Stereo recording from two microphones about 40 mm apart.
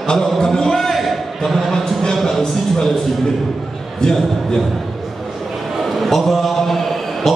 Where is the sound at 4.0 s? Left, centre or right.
Centre.